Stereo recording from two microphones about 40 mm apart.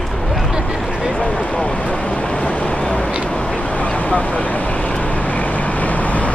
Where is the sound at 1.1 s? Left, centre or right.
Left.